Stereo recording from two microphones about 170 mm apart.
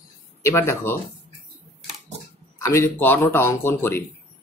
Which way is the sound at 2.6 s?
15° left (ahead or behind).